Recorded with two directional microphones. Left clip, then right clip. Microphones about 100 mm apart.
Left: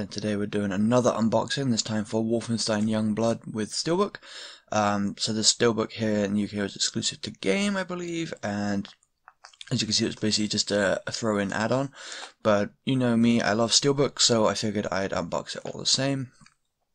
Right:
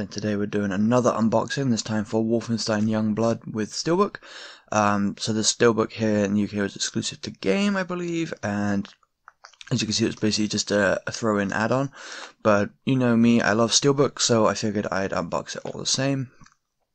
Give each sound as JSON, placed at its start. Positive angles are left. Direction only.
{"t": 0.0, "sound": "speech", "side_deg": -25}